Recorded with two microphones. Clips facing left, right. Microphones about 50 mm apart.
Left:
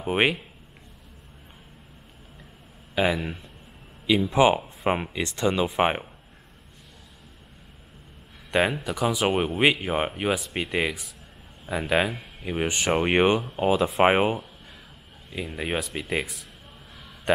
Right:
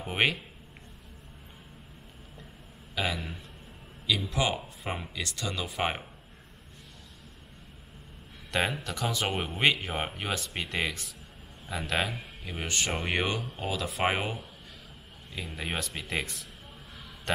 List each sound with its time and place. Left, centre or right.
0.0 s speech: centre
2.9 s speech: left
8.5 s speech: centre; by 14.4 s left
15.3 s speech: centre